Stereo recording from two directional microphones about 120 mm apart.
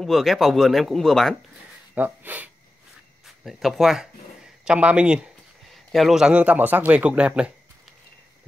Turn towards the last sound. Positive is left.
turn(degrees=-10)  # may be behind; listen again after turning